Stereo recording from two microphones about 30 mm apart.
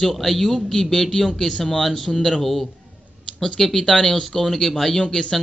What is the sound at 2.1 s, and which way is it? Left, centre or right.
Speech, left.